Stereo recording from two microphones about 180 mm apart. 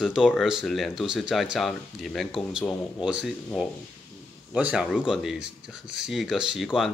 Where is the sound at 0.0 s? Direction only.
Centre (ahead or behind).